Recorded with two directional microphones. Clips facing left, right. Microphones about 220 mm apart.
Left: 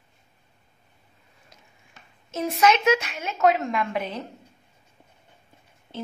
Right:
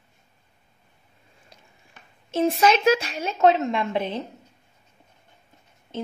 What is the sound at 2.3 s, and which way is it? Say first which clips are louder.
A woman's voice: right 2 dB; 30° right (ahead or behind).